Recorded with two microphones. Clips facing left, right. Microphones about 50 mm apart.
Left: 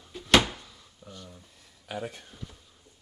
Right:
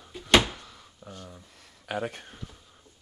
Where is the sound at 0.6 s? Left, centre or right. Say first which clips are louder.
Right 3 dB; right.